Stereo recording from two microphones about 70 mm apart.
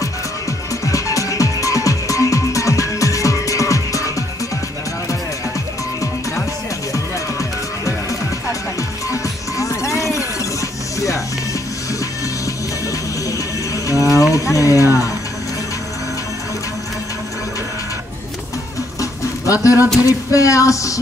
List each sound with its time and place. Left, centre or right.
0.8 s music: left
6.9 s music: left
9.1 s music: left
13.8 s mechanisms: left
14.3 s a sound: left
18.9 s a sound: left
20.1 s speech: left